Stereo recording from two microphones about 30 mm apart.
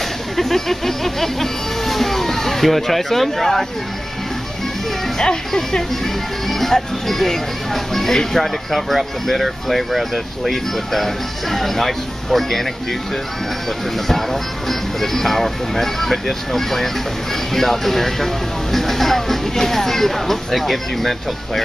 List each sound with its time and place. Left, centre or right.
0.4 s speech: centre
5.2 s speech: left
6.4 s speech: centre
14.0 s speech: centre